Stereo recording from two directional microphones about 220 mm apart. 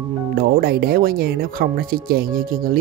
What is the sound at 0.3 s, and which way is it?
Speech, 45° right (ahead or behind).